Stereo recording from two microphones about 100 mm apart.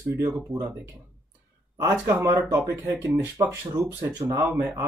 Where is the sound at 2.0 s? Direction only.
30° right (ahead or behind).